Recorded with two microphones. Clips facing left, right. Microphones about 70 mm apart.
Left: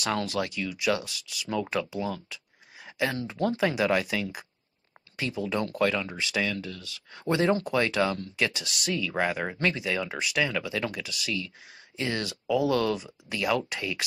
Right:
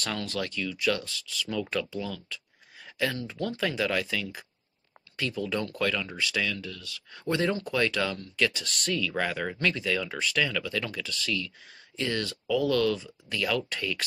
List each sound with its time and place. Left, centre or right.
0.3 s speech: centre
2.0 s speech: left
2.2 s speech: centre
8.6 s speech: centre
8.9 s speech: centre